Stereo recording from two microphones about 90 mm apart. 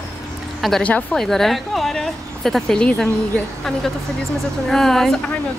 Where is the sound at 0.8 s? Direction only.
15° left (ahead or behind).